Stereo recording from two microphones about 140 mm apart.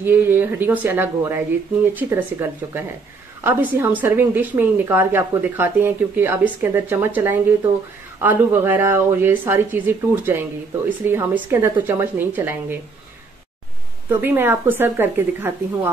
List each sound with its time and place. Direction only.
0.0 s a woman's voice: 15° right (ahead or behind)
14.0 s a woman's voice: 15° right (ahead or behind)